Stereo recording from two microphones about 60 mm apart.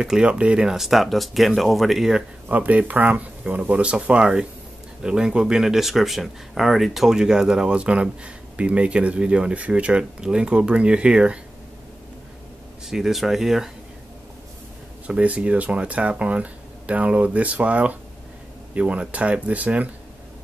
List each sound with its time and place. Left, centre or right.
0.0 s speech: centre
2.4 s speech: right
12.8 s speech: centre
15.0 s speech: right